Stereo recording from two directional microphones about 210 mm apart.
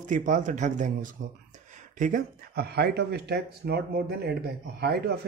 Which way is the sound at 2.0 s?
40° right (ahead or behind).